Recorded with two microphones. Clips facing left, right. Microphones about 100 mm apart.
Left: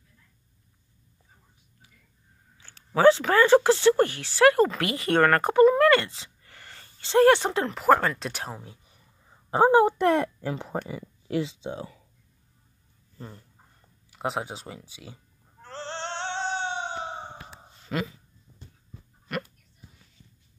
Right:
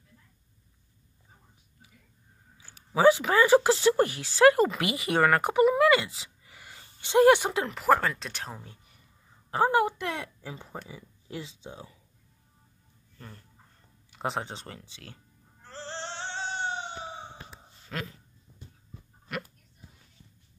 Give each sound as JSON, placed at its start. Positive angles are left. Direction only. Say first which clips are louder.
{"t": 2.5, "sound": "speech", "louder": "left 2 dB", "side_deg": -10}
{"t": 9.5, "sound": "a woman's voice", "louder": "left 5 dB", "side_deg": 25}
{"t": 9.9, "sound": "speech", "louder": "left 12 dB", "side_deg": 50}
{"t": 14.1, "sound": "speech", "louder": "left 2 dB", "side_deg": 5}
{"t": 15.6, "sound": "a sound", "louder": "left 4 dB", "side_deg": 80}
{"t": 17.8, "sound": "speech", "louder": "left 7 dB", "side_deg": 5}
{"t": 19.3, "sound": "speech", "louder": "left 4 dB", "side_deg": 0}